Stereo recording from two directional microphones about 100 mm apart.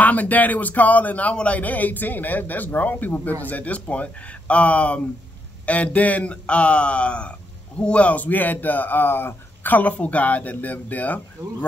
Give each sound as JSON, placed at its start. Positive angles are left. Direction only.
{"t": 0.0, "sound": "a man's voice", "side_deg": 15}